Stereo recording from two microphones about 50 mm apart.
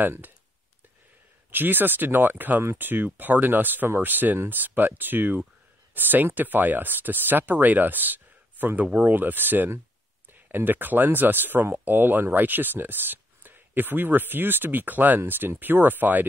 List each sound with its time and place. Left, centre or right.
0.0 s speech: right
1.5 s speech: right